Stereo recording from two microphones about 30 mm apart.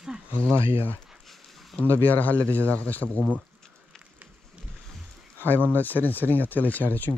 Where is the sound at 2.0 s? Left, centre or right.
Left.